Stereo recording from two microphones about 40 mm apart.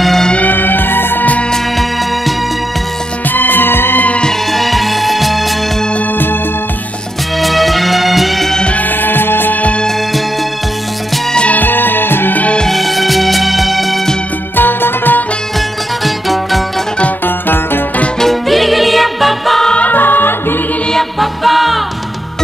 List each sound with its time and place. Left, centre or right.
0.0 s music: centre
0.4 s music: left
3.3 s music: left
4.5 s music: centre
7.3 s music: centre
8.7 s music: left
11.5 s music: left
12.6 s music: centre
14.5 s music: left
16.0 s music: centre
18.2 s music: centre
19.9 s music: left
21.2 s music: centre